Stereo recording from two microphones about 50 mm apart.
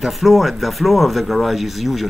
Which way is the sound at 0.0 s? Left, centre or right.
Centre.